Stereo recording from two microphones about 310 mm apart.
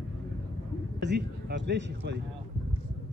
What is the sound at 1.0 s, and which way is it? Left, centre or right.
A man's voice, right.